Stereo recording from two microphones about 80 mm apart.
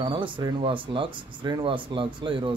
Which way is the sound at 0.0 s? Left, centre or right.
Right.